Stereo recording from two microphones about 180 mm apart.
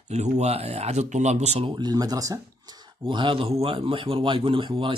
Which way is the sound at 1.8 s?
20° right (ahead or behind).